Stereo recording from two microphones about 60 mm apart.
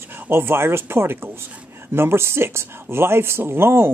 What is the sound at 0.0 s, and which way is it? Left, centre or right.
Speech, right.